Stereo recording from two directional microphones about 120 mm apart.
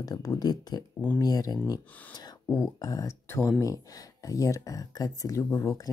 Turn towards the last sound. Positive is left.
turn(degrees=25)  # may be behind; listen again after turning